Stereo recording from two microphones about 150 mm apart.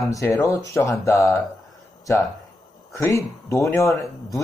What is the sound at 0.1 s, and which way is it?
Speech, 20° left (ahead or behind).